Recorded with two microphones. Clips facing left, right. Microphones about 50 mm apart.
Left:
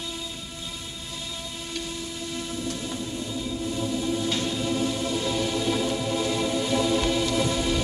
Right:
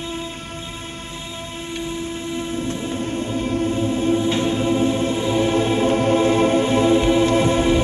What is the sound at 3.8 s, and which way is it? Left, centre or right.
Music, right.